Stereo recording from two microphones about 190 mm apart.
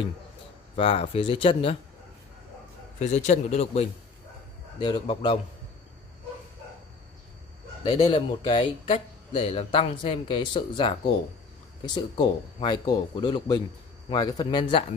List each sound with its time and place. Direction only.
0.7 s speech: 30° left (ahead or behind)
3.0 s speech: 40° left (ahead or behind)
7.8 s speech: 25° left (ahead or behind)